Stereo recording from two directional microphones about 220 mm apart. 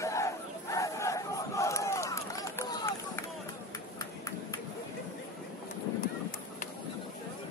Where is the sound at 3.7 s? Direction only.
15° left (ahead or behind).